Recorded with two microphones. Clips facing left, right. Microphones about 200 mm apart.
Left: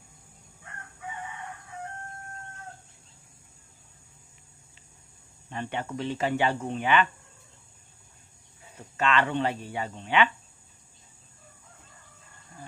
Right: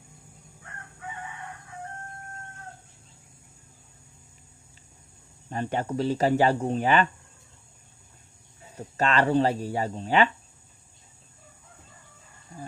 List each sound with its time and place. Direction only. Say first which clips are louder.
5.5 s speech: right 5 dB; 40° right (ahead or behind)
8.7 s speech: right 2 dB; 40° right (ahead or behind)